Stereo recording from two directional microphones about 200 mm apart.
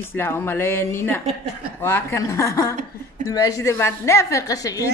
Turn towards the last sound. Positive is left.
turn(degrees=15)  # may be behind; listen again after turning